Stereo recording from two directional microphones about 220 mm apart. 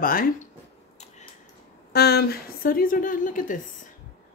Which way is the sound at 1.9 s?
45° left (ahead or behind).